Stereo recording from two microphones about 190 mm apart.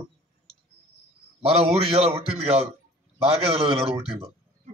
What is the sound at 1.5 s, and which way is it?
A man's voice, 30° right (ahead or behind).